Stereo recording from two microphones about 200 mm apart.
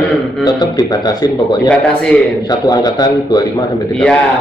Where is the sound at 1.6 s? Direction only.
5° left (ahead or behind).